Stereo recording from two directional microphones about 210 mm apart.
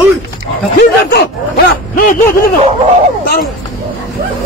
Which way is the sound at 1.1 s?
45° left (ahead or behind).